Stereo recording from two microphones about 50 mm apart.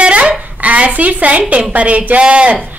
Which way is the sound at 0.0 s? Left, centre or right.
Right.